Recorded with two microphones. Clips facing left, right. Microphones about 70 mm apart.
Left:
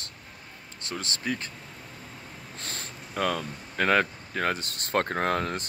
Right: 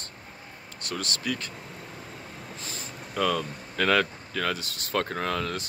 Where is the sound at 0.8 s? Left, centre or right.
Left.